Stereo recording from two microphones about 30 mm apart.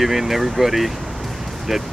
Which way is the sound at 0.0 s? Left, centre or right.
Centre.